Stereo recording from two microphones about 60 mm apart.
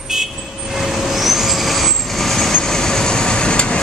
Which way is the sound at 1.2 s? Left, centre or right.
Centre.